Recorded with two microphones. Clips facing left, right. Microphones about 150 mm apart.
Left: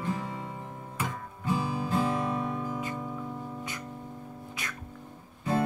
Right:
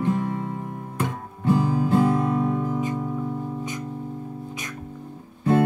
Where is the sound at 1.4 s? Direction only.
55° right (ahead or behind).